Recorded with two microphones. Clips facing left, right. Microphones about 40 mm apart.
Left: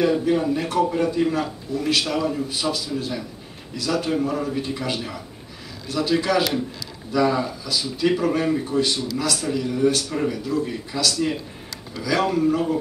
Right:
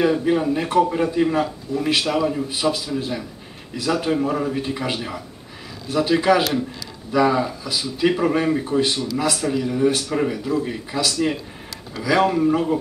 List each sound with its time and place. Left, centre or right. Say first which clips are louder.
0.0 s a man's voice: right 1 dB; centre